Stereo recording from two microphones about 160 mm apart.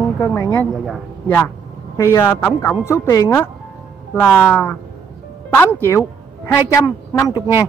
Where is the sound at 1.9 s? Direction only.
15° left (ahead or behind).